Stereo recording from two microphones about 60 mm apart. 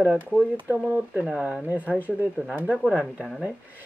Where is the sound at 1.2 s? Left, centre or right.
Right.